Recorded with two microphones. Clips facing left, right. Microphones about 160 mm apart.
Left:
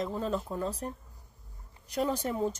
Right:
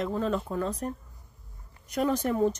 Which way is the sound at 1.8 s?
30° left (ahead or behind).